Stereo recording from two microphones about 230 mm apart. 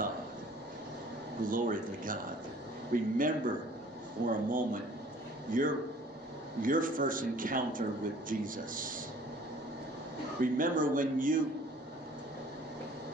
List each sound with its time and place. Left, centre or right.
1.4 s a man's voice: right
10.4 s a man's voice: right